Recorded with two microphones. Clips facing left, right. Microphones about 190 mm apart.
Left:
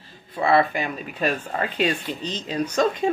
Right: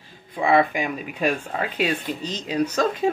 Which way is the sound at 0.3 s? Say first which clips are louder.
Even; 15° right (ahead or behind).